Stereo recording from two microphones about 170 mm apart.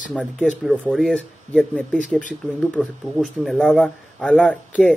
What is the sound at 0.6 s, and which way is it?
Speech, 5° right (ahead or behind).